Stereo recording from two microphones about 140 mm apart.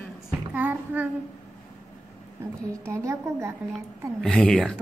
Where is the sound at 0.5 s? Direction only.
10° right (ahead or behind).